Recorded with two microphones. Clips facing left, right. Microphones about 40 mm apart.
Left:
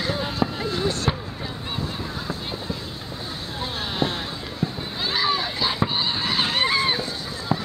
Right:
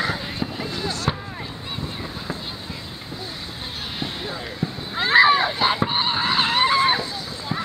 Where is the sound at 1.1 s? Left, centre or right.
Centre.